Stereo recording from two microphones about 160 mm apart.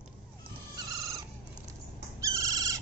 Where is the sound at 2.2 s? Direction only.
20° right (ahead or behind).